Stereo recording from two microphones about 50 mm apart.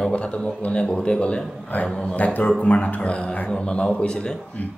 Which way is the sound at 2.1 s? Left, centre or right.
Left.